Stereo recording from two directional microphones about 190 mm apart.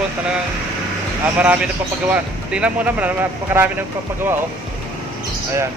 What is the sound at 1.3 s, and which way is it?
A man's voice, 10° right (ahead or behind).